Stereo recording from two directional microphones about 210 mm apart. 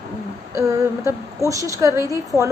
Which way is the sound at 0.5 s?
15° right (ahead or behind).